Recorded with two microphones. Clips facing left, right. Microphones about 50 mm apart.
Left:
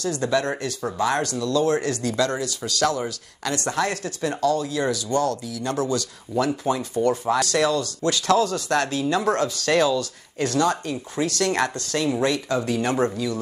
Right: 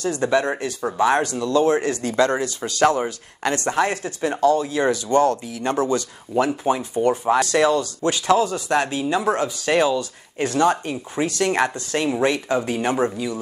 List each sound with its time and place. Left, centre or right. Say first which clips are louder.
0.0 s speech: right 3 dB; right
12.9 s speech: right 1 dB; centre